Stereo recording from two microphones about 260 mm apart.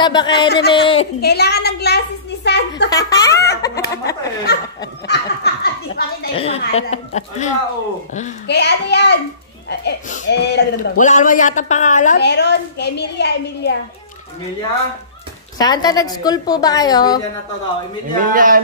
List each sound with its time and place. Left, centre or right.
0.0 s a woman's voice: centre
0.5 s a woman's voice: left
0.7 s a woman's voice: centre
1.2 s a woman's voice: left
2.9 s a woman's voice: centre
4.5 s a woman's voice: left
5.0 s a sound: left
6.3 s a woman's voice: left
8.5 s a woman's voice: left
11.1 s a woman's voice: left
15.5 s a woman's voice: centre
18.3 s a sound: right